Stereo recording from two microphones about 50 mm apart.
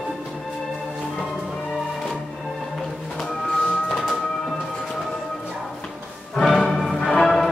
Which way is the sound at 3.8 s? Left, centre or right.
Centre.